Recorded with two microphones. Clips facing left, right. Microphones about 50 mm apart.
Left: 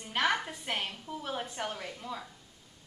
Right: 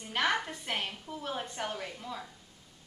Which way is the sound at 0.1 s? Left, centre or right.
Centre.